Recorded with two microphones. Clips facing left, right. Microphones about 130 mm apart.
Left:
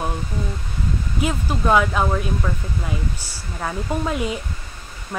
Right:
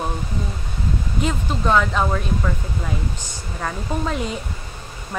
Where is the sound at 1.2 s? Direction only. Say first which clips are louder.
Left 1 dB; 5° left (ahead or behind).